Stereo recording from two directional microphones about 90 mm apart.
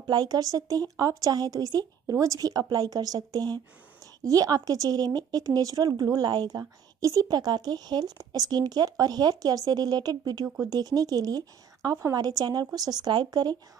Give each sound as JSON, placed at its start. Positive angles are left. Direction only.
{"t": 0.0, "sound": "speech", "side_deg": -50}
{"t": 6.6, "sound": "speech", "side_deg": -35}